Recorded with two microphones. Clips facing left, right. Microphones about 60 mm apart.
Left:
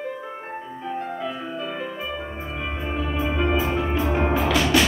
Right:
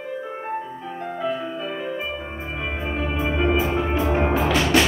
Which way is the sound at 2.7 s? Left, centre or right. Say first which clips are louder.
Right 1 dB; centre.